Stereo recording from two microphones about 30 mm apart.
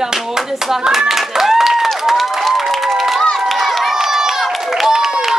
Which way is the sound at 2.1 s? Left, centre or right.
Centre.